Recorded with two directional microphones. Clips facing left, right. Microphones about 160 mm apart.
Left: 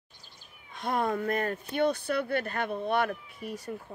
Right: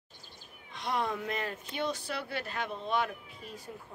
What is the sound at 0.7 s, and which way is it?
Speech, 50° left (ahead or behind).